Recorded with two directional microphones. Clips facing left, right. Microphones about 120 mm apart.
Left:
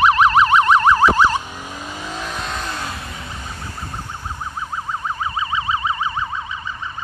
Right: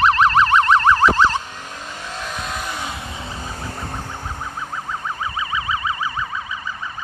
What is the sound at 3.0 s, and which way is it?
Vehicle, 25° right (ahead or behind).